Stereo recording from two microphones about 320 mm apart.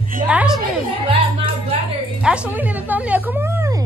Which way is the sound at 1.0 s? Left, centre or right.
Centre.